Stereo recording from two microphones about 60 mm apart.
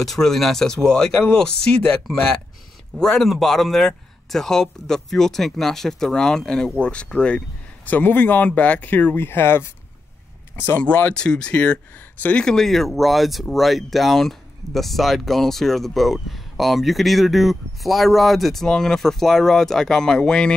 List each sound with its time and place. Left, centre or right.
0.0 s speech: centre
3.0 s speech: centre
7.8 s speech: left
11.1 s speech: centre
12.4 s speech: centre